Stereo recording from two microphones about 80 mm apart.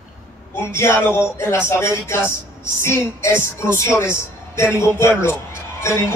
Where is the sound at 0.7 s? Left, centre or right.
Left.